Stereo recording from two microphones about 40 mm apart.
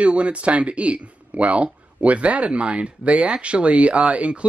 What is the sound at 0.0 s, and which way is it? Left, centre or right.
Speech, right.